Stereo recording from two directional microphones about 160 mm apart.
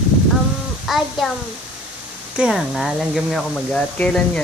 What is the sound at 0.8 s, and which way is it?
Speech, centre (ahead or behind).